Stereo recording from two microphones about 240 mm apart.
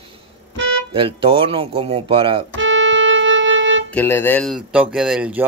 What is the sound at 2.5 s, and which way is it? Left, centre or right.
Music, right.